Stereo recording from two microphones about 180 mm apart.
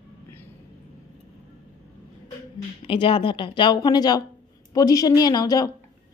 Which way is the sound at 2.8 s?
30° left (ahead or behind).